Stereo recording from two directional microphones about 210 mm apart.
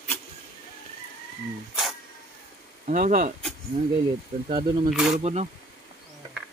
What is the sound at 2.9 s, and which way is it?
Speech, 40° right (ahead or behind).